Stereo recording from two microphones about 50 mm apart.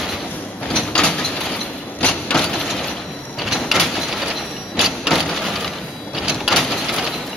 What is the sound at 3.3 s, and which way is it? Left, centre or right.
Sliding door, centre.